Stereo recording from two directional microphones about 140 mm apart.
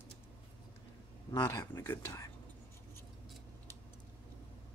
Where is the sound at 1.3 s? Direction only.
25° left (ahead or behind).